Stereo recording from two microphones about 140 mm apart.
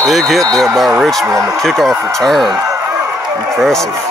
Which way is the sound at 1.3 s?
20° right (ahead or behind).